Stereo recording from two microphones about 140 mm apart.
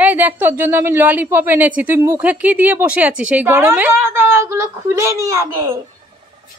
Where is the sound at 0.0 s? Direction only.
15° right (ahead or behind).